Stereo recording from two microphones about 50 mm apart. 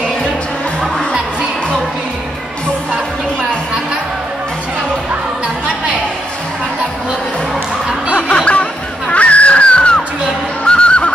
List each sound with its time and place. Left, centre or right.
8.2 s music: left
10.6 s neigh: left